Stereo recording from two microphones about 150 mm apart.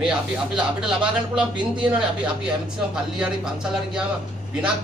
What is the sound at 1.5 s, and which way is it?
Speech, 30° right (ahead or behind).